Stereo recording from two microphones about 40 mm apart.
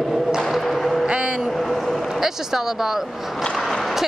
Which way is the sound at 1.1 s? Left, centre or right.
Right.